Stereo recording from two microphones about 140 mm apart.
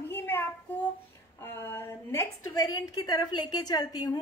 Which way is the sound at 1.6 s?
15° left (ahead or behind).